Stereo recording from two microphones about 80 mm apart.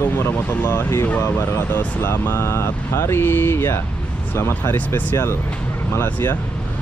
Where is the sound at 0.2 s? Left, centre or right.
Left.